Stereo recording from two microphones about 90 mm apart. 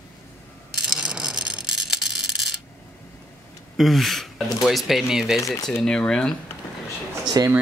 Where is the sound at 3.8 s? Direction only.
Centre (ahead or behind).